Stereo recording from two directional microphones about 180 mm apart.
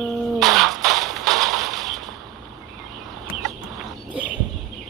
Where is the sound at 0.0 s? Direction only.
Centre (ahead or behind).